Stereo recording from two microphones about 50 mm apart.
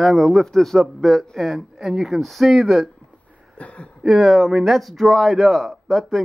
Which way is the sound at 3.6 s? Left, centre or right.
Left.